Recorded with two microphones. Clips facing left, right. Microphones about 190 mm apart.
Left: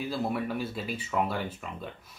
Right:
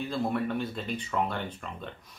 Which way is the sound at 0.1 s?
5° left (ahead or behind).